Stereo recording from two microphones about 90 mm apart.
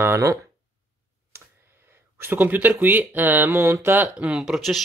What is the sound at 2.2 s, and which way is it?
Speech, 20° right (ahead or behind).